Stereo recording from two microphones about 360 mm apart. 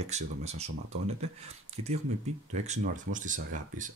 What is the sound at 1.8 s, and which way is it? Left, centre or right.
Speech, right.